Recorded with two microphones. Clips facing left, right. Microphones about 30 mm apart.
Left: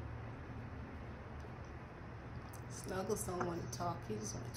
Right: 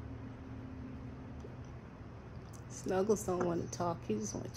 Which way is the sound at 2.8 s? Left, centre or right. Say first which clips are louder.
Right 8 dB; left.